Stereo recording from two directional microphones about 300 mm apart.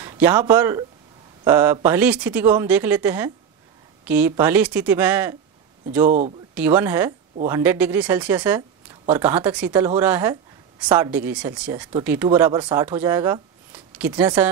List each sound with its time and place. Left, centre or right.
0.0 s a woman's voice: centre
6.0 s speech: right
6.5 s a woman's voice: centre